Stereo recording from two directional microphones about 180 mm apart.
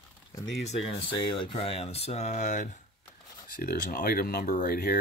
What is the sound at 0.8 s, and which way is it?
Speech, 30° left (ahead or behind).